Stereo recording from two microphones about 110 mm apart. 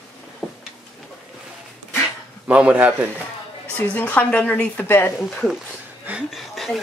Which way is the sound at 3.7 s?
15° left (ahead or behind).